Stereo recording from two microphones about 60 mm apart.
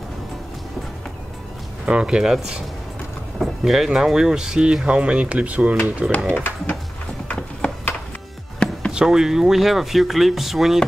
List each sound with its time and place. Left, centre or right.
1.9 s speech: centre
6.3 s speech: left
7.2 s music: centre
8.9 s speech: centre